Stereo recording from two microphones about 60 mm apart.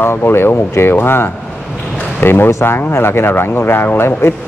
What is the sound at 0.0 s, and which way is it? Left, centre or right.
Speech, left.